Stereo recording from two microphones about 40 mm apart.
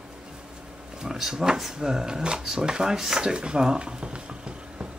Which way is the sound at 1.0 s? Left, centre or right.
Centre.